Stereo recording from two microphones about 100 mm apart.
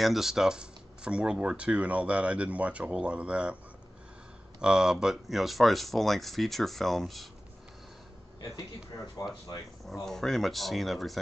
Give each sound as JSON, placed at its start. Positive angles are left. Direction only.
{"t": 0.0, "sound": "speech", "side_deg": -5}
{"t": 4.6, "sound": "speech", "side_deg": -5}
{"t": 9.2, "sound": "speech", "side_deg": 35}
{"t": 10.0, "sound": "speech", "side_deg": 5}